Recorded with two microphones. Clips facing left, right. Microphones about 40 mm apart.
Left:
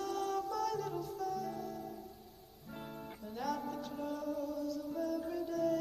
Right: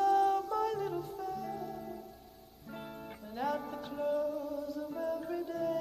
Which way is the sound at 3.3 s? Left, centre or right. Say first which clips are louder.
Right 3 dB; right.